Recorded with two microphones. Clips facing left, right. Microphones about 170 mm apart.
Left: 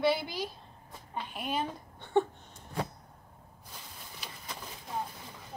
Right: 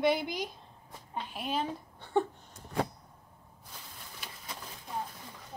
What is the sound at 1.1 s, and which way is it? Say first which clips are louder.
Speech: even; centre (ahead or behind).